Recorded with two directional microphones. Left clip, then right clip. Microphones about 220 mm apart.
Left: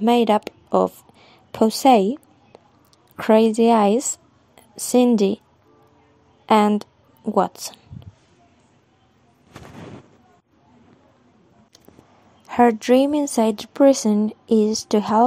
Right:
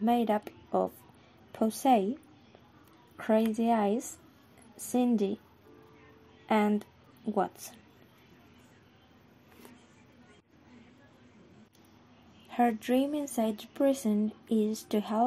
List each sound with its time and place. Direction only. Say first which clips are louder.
0.0 s a woman's voice: left 11 dB; 45° left (ahead or behind)
3.2 s a woman's voice: left 13 dB; 45° left (ahead or behind)
6.4 s a woman's voice: left 12 dB; 45° left (ahead or behind)
12.4 s a woman's voice: left 13 dB; 35° left (ahead or behind)